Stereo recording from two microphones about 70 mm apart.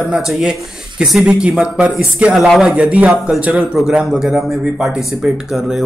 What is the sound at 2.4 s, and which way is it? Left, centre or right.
Speech, centre.